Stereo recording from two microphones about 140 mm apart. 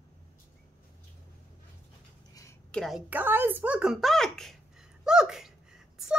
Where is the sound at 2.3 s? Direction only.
20° left (ahead or behind).